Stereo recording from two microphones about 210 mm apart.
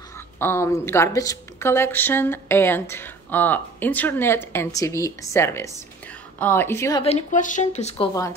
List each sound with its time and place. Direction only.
0.4 s a woman's voice: 10° left (ahead or behind)
7.0 s speech: 30° left (ahead or behind)
8.1 s a woman's voice: 15° left (ahead or behind)